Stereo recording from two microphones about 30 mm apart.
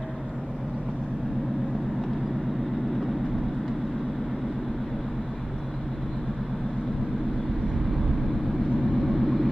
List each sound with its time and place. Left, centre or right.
8.9 s vehicle: centre